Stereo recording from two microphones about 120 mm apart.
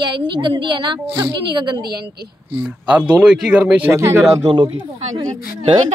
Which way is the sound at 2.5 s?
15° right (ahead or behind).